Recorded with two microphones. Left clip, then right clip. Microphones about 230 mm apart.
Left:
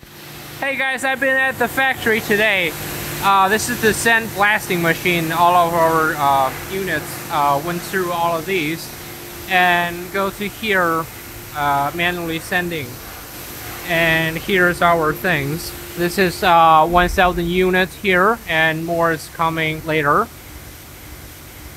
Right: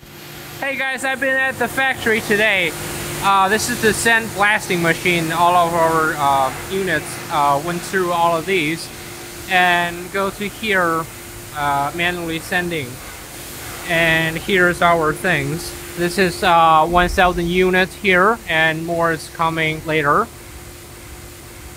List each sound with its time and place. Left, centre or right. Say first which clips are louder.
0.6 s speech: left 1 dB; centre
8.1 s speech: right 3 dB; right
9.5 s speech: even; centre
13.8 s speech: right 1 dB; centre